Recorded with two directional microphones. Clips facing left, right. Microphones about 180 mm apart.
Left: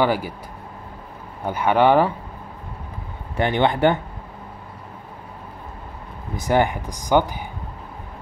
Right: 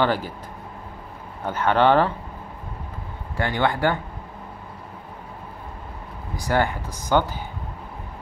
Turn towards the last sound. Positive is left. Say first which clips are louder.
# left 2 dB
turn(degrees=15)  # may be behind; listen again after turning